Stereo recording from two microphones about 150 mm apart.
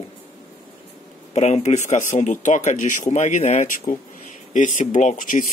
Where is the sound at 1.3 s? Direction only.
45° left (ahead or behind).